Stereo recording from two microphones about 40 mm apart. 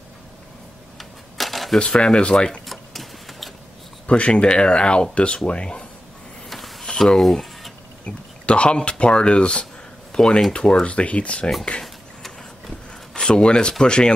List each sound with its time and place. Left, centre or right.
1.4 s a sound: centre
1.8 s speech: left
2.6 s sewing machine: centre
4.1 s speech: left
6.5 s a sound: centre
7.2 s speech: centre
8.0 s speech: left
10.1 s speech: centre
10.9 s speech: left
11.8 s a sound: centre
13.1 s speech: left